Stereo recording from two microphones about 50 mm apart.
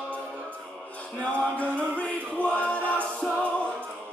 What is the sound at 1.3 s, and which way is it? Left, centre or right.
Choir, left.